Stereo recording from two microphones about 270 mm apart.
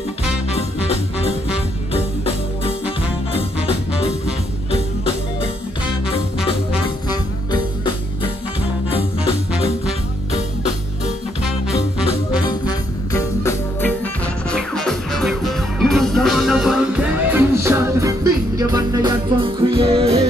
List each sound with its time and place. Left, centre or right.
0.5 s music: left
4.6 s music: left
12.4 s music: centre; by 20.2 s right